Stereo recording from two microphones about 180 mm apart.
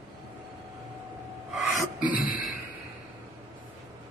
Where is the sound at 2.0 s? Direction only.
50° left (ahead or behind).